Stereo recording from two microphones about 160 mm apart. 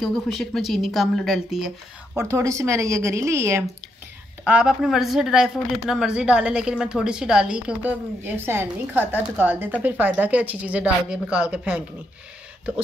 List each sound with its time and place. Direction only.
0.0 s a woman's voice: centre (ahead or behind)
2.1 s a woman's voice: 20° right (ahead or behind)
4.5 s a woman's voice: 5° right (ahead or behind)